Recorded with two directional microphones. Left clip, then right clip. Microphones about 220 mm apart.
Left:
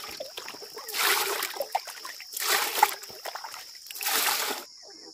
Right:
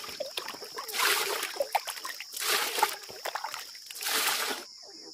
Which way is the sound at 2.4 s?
30° left (ahead or behind).